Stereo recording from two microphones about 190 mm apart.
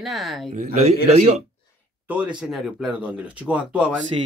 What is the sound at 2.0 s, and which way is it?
Speech, 10° right (ahead or behind).